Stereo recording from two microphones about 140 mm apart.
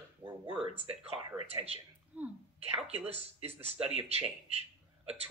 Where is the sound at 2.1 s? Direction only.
5° right (ahead or behind).